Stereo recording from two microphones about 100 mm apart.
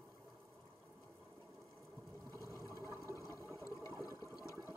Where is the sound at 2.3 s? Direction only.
30° left (ahead or behind).